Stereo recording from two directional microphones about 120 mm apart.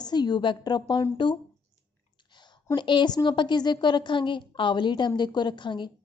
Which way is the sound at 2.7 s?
40° left (ahead or behind).